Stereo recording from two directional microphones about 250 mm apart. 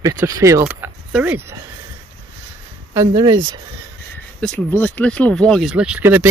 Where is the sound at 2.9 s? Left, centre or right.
Centre.